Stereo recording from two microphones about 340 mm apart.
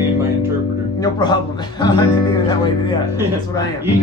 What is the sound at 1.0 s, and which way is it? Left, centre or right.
Speech, centre.